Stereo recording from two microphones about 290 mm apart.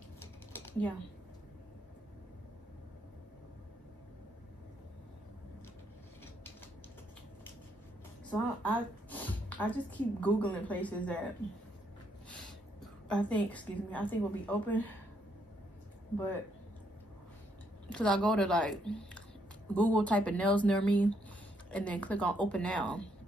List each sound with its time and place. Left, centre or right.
0.5 s typing: centre
8.3 s a woman's voice: centre
12.3 s a woman's voice: centre
17.9 s speech: centre